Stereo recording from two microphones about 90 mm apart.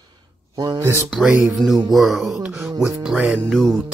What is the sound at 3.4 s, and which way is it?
Speech, 5° left (ahead or behind).